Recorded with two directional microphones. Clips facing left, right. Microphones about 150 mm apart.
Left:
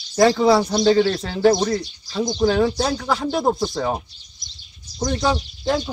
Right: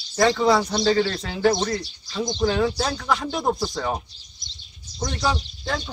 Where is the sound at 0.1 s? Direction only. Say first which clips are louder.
Left 4 dB; 10° left (ahead or behind).